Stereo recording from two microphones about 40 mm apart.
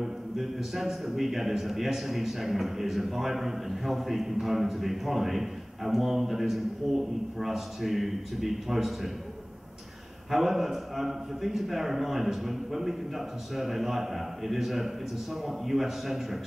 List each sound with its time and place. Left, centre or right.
0.0 s a man's voice: centre
10.3 s a man's voice: centre